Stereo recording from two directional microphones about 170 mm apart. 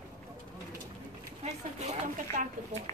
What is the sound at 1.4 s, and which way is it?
Speech, 45° right (ahead or behind).